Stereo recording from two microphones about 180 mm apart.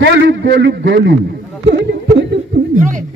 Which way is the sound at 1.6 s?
70° right (ahead or behind).